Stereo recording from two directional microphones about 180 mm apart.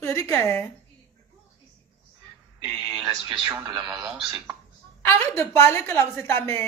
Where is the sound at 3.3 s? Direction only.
20° right (ahead or behind).